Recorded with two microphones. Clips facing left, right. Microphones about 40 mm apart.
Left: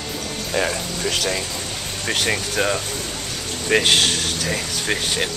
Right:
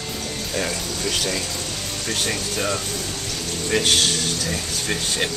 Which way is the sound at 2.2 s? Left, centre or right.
Left.